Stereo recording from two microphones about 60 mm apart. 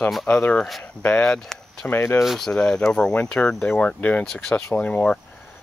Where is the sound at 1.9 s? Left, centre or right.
Left.